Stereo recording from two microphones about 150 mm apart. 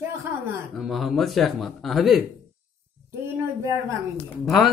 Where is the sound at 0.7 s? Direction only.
Centre (ahead or behind).